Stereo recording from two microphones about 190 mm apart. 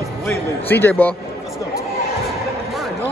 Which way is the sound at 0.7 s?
10° left (ahead or behind).